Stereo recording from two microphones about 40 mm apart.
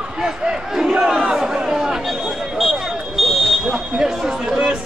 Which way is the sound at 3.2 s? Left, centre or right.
Centre.